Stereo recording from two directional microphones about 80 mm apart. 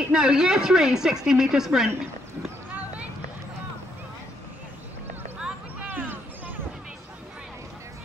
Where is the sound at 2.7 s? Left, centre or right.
Right.